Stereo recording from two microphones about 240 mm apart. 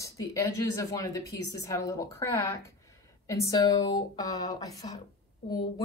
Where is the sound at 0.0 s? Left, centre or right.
Centre.